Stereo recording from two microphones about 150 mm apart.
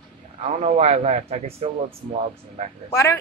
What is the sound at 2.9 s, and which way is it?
Speech, 20° left (ahead or behind).